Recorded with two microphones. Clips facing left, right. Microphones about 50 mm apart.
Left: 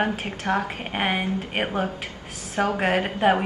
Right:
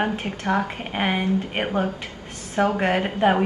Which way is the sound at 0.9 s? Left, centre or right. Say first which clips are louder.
Right 2 dB; centre.